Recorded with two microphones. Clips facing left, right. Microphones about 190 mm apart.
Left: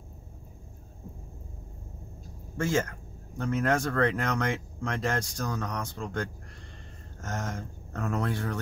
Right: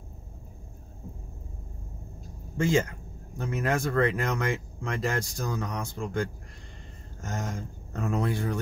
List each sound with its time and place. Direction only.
2.5 s speech: 15° right (ahead or behind)